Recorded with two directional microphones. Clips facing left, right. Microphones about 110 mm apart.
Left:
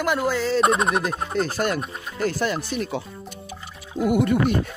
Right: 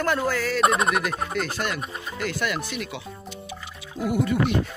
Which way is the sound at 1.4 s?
45° left (ahead or behind).